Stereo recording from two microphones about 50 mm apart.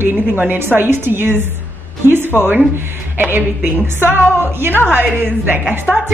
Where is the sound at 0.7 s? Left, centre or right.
Right.